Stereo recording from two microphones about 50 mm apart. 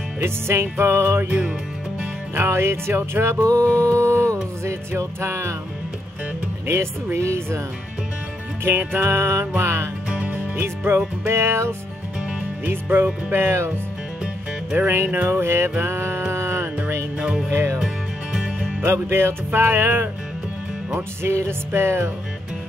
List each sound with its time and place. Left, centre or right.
0.2 s music: right
1.2 s music: right
2.3 s music: right
6.7 s music: right
8.6 s music: right
10.1 s music: right
10.9 s music: right
12.6 s music: right
15.2 s music: right
17.2 s music: centre
17.5 s music: right
18.3 s music: centre
18.9 s music: right
21.2 s music: right